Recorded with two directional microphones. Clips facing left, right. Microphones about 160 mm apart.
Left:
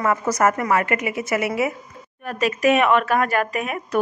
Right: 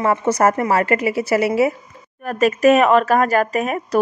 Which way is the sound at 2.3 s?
45° right (ahead or behind).